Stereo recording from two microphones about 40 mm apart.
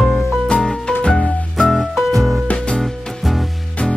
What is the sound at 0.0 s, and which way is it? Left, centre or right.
Music, centre.